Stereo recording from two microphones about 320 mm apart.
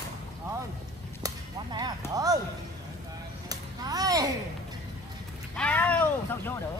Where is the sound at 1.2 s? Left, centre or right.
Centre.